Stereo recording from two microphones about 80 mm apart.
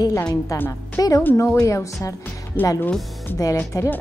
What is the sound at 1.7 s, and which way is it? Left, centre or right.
Speech, left.